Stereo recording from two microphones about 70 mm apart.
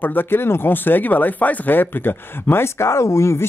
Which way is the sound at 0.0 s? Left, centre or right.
Left.